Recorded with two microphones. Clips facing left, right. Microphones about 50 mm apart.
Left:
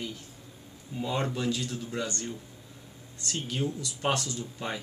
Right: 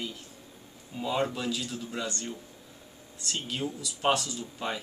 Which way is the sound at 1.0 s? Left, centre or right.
Centre.